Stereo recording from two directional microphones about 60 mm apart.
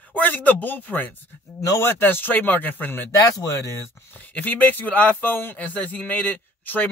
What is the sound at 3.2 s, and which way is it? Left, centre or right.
Speech, left.